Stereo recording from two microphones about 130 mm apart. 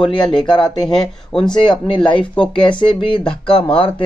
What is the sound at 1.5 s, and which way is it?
Speech, 40° left (ahead or behind).